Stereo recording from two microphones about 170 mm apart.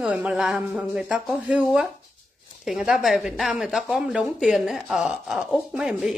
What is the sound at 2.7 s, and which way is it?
Speech, 5° right (ahead or behind).